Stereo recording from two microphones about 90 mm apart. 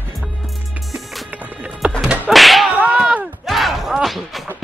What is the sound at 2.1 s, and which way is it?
Whip, centre (ahead or behind).